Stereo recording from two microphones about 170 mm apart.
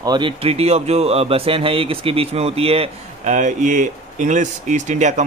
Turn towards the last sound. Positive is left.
turn(degrees=-45)  # may be behind; listen again after turning